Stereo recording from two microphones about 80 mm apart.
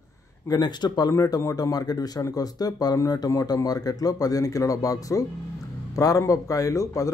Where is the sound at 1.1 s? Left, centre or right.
Left.